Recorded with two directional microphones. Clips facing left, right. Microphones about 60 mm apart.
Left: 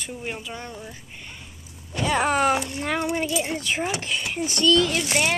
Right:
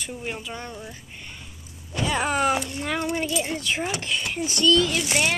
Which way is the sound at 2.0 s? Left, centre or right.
Left.